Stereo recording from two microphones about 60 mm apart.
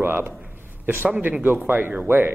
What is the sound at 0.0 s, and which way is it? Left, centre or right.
A man's voice, right.